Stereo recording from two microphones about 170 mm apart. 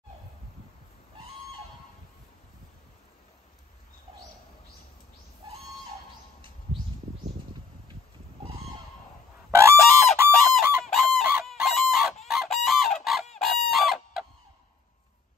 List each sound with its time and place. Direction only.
9.5 s goose: 15° right (ahead or behind)
10.1 s fowl: 15° right (ahead or behind)
10.8 s fowl: centre (ahead or behind)
12.3 s chicken: centre (ahead or behind)
13.0 s fowl: centre (ahead or behind)